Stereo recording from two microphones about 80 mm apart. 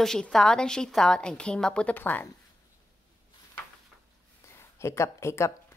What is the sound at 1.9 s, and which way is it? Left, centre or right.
Speech, left.